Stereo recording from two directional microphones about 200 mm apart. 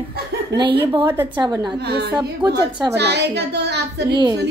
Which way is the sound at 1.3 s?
20° right (ahead or behind).